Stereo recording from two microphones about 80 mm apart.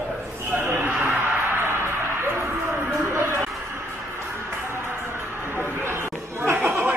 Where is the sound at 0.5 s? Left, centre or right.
Right.